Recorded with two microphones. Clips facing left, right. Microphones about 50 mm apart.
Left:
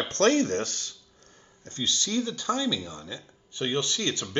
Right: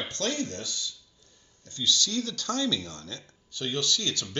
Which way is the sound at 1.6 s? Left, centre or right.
Left.